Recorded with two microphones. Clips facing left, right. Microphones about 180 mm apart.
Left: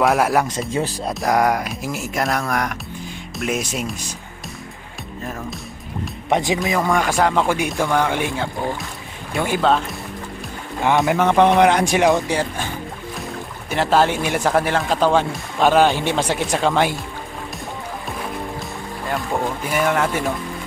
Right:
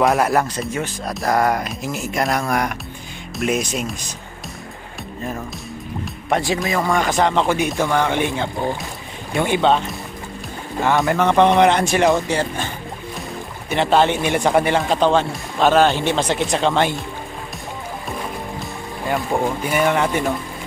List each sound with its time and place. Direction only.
0.0 s speech: 5° left (ahead or behind)
0.6 s speech: 30° left (ahead or behind)
1.3 s speech: 10° left (ahead or behind)
6.2 s speech: 15° left (ahead or behind)
6.6 s speech: centre (ahead or behind)
11.0 s speech: 5° left (ahead or behind)
13.7 s speech: 5° left (ahead or behind)
19.0 s speech: 10° right (ahead or behind)